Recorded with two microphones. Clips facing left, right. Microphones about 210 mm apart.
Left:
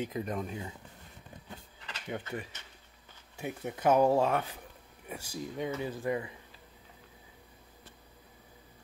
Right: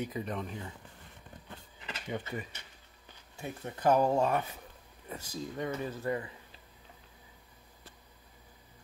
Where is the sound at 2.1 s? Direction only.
Centre (ahead or behind).